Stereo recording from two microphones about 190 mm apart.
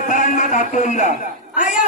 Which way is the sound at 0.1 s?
45° left (ahead or behind).